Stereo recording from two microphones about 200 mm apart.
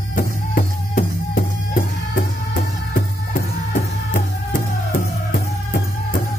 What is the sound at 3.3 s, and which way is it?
Music, 40° left (ahead or behind).